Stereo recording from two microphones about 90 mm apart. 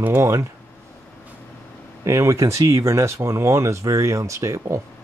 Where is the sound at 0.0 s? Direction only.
30° right (ahead or behind).